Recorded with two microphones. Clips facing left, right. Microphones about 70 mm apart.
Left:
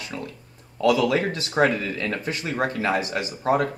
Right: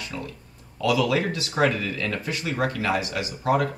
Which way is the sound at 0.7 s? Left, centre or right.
Left.